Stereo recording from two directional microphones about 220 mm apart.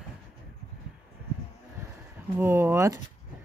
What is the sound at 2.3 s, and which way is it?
Speech, 10° right (ahead or behind).